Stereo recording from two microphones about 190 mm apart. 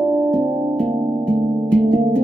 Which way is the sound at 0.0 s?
Centre (ahead or behind).